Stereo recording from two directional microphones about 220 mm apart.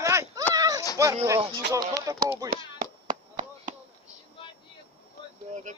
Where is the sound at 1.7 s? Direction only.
15° right (ahead or behind).